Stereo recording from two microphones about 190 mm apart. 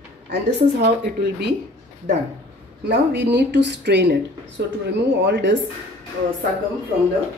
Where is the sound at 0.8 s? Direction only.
60° right (ahead or behind).